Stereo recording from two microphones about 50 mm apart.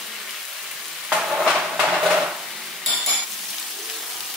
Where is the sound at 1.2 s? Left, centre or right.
Centre.